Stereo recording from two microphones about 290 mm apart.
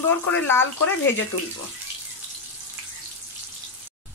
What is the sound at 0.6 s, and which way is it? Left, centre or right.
Speech, left.